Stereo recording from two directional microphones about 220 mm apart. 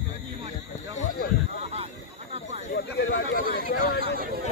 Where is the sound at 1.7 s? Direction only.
30° right (ahead or behind).